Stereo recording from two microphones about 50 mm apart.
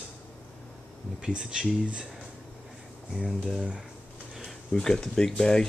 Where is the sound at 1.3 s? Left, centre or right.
Centre.